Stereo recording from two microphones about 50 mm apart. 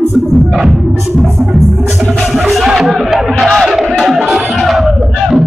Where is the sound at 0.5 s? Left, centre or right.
Centre.